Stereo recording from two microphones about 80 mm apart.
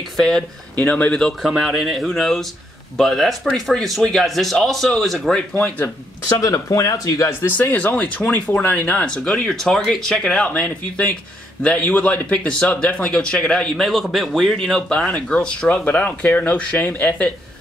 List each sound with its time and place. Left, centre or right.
0.7 s speech: left
1.4 s speech: centre
5.5 s speech: left
6.4 s speech: left
7.2 s a man's voice: left